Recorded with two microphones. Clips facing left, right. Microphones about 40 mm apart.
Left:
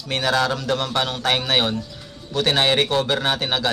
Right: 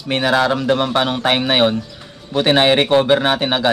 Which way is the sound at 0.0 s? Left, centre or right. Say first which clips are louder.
Right 5 dB; right.